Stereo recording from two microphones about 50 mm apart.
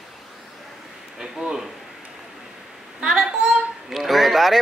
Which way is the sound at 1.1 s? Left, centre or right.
Centre.